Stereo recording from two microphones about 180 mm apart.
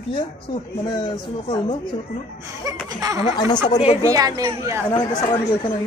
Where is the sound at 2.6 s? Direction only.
20° right (ahead or behind).